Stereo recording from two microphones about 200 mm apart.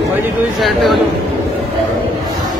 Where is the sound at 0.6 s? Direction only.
Centre (ahead or behind).